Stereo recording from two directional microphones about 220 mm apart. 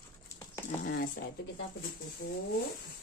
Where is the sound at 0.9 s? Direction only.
40° left (ahead or behind).